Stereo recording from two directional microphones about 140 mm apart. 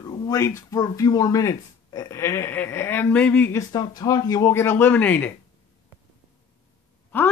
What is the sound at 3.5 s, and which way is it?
Speech, 25° left (ahead or behind).